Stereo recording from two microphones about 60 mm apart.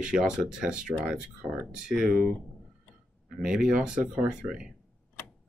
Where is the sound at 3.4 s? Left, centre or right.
Centre.